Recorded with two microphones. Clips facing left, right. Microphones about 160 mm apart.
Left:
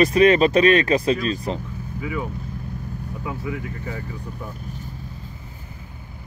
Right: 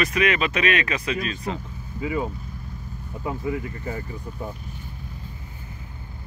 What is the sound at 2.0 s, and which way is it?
Speech, 25° right (ahead or behind).